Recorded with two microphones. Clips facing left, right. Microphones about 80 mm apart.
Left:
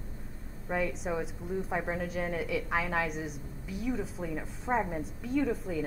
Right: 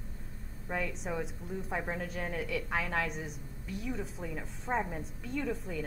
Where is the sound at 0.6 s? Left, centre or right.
Centre.